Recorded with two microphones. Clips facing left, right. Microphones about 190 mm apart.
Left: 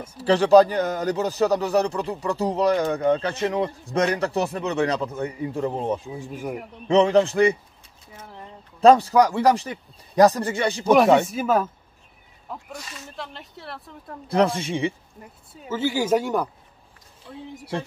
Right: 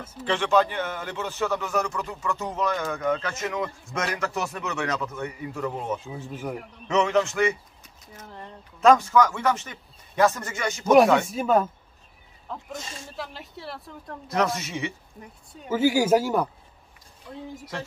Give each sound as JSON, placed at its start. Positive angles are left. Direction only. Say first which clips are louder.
{"t": 0.2, "sound": "a man's voice", "louder": "left 8 dB", "side_deg": 35}
{"t": 6.0, "sound": "speech", "louder": "left 2 dB", "side_deg": 10}
{"t": 6.9, "sound": "a man's voice", "louder": "left 5 dB", "side_deg": 30}
{"t": 8.8, "sound": "a man's voice", "louder": "left 3 dB", "side_deg": 35}
{"t": 11.2, "sound": "speech", "louder": "even", "side_deg": 5}
{"t": 12.7, "sound": "speech", "louder": "right 1 dB", "side_deg": -30}
{"t": 13.1, "sound": "speech", "louder": "even", "side_deg": 0}
{"t": 14.2, "sound": "speech", "louder": "left 5 dB", "side_deg": 30}
{"t": 15.7, "sound": "speech", "louder": "right 2 dB", "side_deg": -10}